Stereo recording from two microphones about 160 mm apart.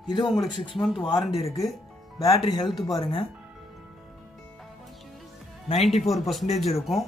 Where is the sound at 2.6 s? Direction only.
Centre (ahead or behind).